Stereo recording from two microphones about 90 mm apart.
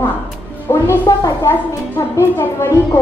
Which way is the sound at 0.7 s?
35° left (ahead or behind).